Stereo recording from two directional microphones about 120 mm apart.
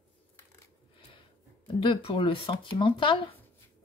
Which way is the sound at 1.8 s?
45° left (ahead or behind).